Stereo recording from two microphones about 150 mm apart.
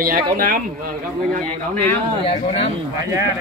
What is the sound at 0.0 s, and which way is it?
Speech, 70° right (ahead or behind).